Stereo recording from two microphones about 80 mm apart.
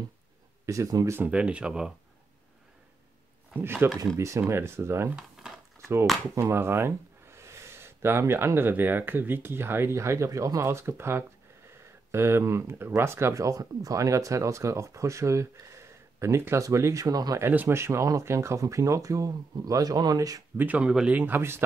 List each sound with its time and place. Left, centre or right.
0.7 s speech: right
1.2 s speech: centre
3.5 s speech: right
4.2 s speech: right
5.1 s a sound: centre
6.5 s speech: right
17.4 s speech: right
20.5 s speech: centre
21.4 s speech: right